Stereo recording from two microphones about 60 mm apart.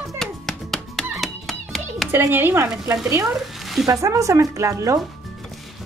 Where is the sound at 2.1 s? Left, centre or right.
Right.